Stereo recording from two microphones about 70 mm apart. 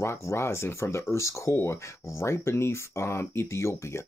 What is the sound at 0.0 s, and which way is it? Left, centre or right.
Speech, left.